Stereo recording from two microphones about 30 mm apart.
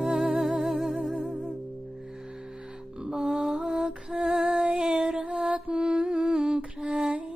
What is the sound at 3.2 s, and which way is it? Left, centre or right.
Music, right.